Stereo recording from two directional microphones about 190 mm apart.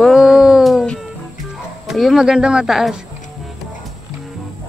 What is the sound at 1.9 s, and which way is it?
Speech, centre (ahead or behind).